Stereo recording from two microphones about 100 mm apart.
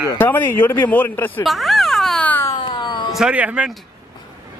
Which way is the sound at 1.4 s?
Centre (ahead or behind).